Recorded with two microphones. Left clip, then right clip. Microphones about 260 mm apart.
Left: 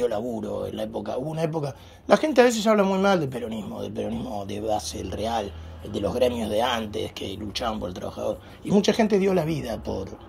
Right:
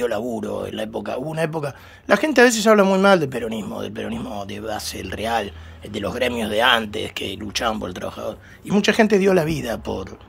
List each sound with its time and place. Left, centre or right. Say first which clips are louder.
0.2 s speech: right 4 dB; right
0.7 s speech: right 3 dB; centre